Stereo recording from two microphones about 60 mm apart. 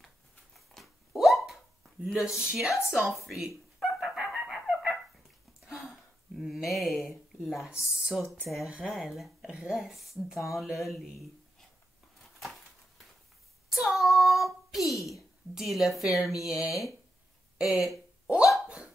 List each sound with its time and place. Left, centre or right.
0.6 s dog: centre
2.1 s speech: centre
3.3 s a sound: centre
4.6 s fowl: centre
5.7 s a sound: centre
7.8 s speech: centre
8.9 s speech: centre
12.4 s a sound: centre
13.7 s child singing: centre
16.0 s speech: centre
18.2 s hiccup: centre